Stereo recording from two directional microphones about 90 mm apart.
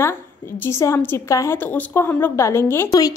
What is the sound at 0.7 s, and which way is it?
Speech, 30° left (ahead or behind).